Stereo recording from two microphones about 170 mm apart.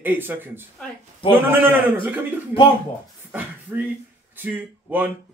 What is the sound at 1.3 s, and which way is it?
Speech, 10° right (ahead or behind).